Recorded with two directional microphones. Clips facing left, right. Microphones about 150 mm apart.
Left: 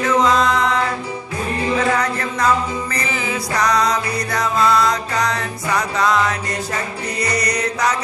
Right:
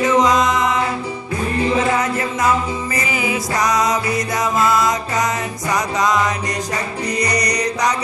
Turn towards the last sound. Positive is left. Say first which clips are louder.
# right 1 dB
turn(degrees=-15)  # may be behind; listen again after turning